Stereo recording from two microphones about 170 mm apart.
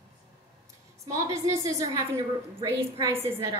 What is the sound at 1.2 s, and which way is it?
A woman's voice, 20° right (ahead or behind).